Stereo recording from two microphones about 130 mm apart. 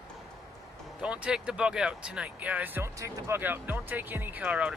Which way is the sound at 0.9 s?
10° right (ahead or behind).